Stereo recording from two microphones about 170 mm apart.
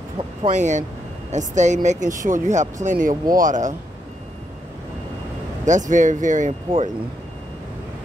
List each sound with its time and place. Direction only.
0.4 s speech: 45° right (ahead or behind)
5.7 s speech: 45° right (ahead or behind)